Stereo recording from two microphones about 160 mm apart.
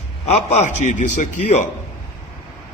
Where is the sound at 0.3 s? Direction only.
45° left (ahead or behind).